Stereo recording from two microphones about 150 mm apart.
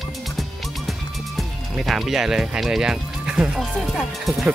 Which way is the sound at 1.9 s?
Centre (ahead or behind).